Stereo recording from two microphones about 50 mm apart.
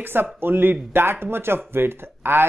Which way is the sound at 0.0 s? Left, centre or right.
Right.